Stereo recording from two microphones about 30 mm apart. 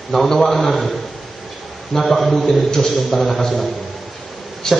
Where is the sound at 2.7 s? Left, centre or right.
Centre.